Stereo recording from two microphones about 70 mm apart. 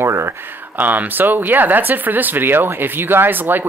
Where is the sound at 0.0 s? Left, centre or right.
Right.